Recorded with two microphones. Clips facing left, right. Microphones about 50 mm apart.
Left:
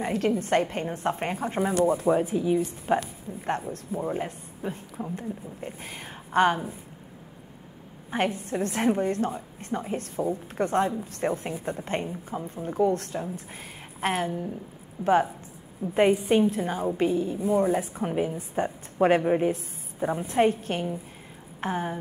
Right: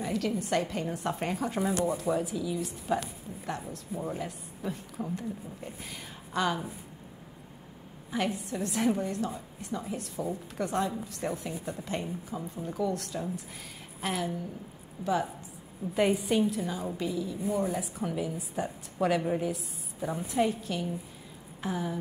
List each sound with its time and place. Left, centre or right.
0.0 s a woman's voice: left
8.1 s a woman's voice: left